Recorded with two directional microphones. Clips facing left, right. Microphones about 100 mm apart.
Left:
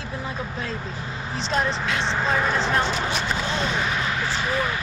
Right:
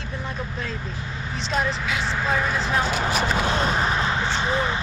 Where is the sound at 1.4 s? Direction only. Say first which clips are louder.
Left 1 dB; centre (ahead or behind).